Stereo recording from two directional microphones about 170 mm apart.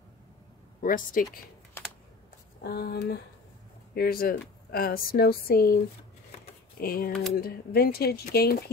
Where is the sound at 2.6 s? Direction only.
70° left (ahead or behind).